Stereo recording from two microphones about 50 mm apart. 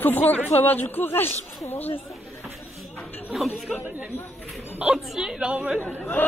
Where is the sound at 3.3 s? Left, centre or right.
Centre.